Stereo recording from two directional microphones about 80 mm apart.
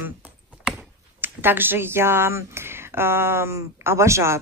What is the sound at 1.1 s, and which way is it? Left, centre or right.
Speech, right.